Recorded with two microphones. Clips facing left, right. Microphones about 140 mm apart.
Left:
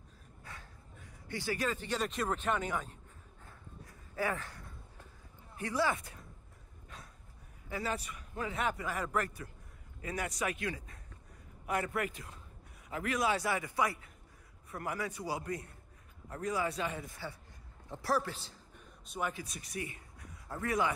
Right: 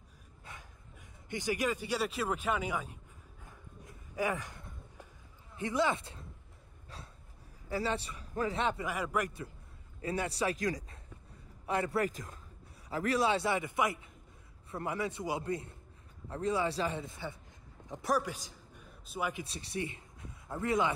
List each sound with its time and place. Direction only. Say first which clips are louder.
0.5 s a sound: even; 20° right (ahead or behind)
1.3 s speech: right 2 dB; 15° right (ahead or behind)
3.4 s a sound: right 1 dB; 15° right (ahead or behind)
5.6 s speech: right 2 dB; 20° right (ahead or behind)
7.7 s speech: right 3 dB; 30° right (ahead or behind)
8.8 s speech: right 1 dB; 10° right (ahead or behind)
10.0 s speech: right 3 dB; 30° right (ahead or behind); by 19.3 s 5° right (ahead or behind)
19.3 s a man's voice: right 3 dB; 30° right (ahead or behind)